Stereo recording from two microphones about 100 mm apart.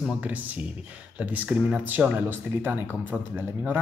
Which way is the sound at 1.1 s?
10° right (ahead or behind).